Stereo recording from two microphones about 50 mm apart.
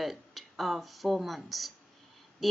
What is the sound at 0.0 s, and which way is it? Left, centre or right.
Speech, centre.